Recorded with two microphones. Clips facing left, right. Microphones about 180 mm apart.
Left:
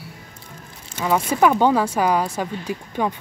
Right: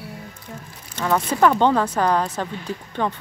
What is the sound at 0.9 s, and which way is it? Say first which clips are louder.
Speech: left 1 dB; 10° left (ahead or behind).